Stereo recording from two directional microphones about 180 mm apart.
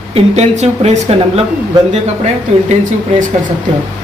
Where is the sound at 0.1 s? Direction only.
35° right (ahead or behind).